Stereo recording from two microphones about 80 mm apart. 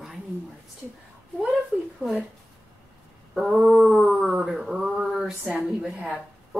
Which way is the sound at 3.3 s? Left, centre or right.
Centre.